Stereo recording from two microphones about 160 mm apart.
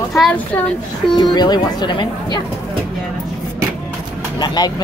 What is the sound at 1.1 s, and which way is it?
Speech, 25° left (ahead or behind).